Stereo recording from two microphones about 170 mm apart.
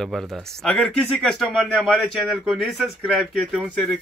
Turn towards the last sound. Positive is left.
turn(degrees=5)  # may be behind; listen again after turning